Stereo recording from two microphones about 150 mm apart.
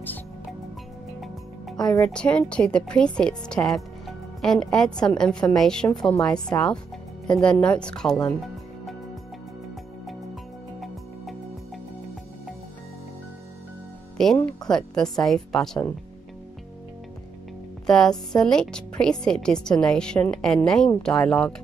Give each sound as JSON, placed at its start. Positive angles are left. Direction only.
{"t": 1.2, "sound": "music", "side_deg": 0}
{"t": 2.0, "sound": "a woman's voice", "side_deg": 5}
{"t": 10.8, "sound": "music", "side_deg": 0}
{"t": 14.1, "sound": "a woman's voice", "side_deg": 5}
{"t": 17.8, "sound": "music", "side_deg": 5}
{"t": 18.3, "sound": "a woman's voice", "side_deg": 5}